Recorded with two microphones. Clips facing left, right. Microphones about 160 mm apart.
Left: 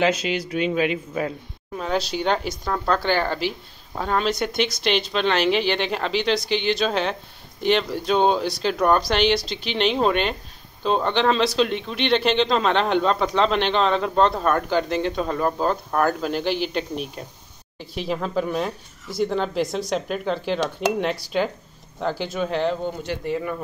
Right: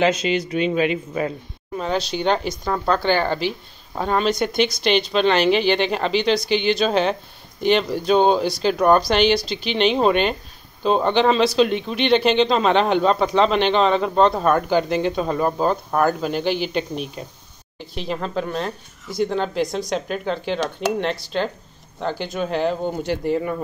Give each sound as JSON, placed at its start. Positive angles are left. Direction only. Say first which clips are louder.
{"t": 0.0, "sound": "speech", "louder": "right 2 dB", "side_deg": 5}
{"t": 22.8, "sound": "speech", "louder": "right 4 dB", "side_deg": -35}